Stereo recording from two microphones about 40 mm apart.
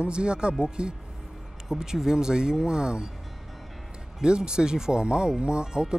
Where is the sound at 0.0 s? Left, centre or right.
Right.